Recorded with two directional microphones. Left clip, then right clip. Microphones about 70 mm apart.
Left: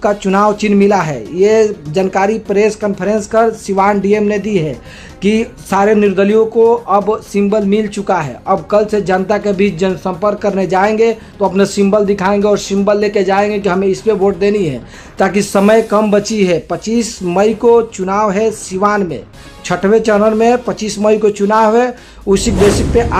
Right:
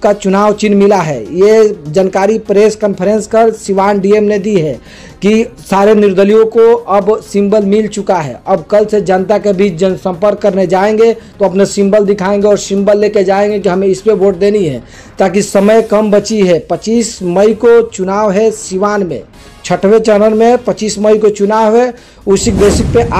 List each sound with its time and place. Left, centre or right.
0.0 s speech: right
5.7 s speech: right
11.5 s speech: centre; by 14.8 s right
15.1 s speech: right
16.2 s speech: right
21.0 s speech: centre